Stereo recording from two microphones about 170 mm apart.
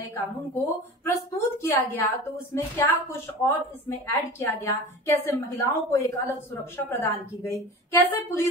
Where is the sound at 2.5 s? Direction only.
15° left (ahead or behind).